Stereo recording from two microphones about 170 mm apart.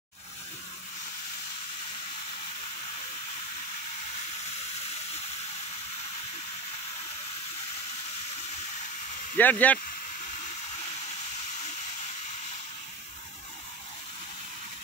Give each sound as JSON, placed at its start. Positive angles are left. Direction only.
{"t": 9.4, "sound": "speech", "side_deg": 10}